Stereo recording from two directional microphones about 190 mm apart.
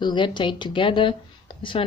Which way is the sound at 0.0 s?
25° left (ahead or behind).